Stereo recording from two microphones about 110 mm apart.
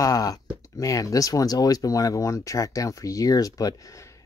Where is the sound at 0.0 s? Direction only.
35° left (ahead or behind).